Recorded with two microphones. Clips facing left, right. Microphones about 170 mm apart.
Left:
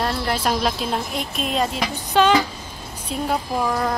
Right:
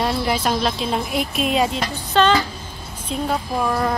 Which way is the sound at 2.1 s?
10° left (ahead or behind).